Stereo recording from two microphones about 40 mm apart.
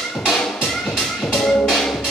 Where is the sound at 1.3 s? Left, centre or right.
Centre.